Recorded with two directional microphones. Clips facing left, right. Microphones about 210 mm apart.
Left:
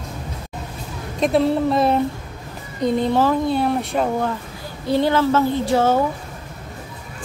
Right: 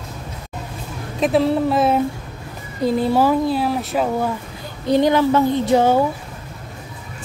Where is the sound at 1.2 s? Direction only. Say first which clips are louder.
Right 1 dB; centre (ahead or behind).